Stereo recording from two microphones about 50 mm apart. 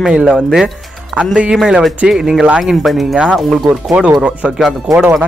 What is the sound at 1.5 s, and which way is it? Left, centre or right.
Speech, centre.